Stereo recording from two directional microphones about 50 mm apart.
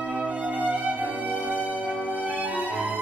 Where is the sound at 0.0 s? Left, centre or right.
Right.